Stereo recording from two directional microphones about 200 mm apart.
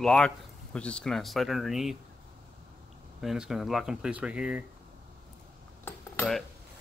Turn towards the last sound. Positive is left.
turn(degrees=10)  # may be behind; listen again after turning